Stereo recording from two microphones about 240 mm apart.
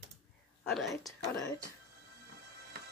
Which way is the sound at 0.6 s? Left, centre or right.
Centre.